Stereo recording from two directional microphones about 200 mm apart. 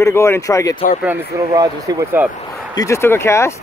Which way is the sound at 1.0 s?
10° right (ahead or behind).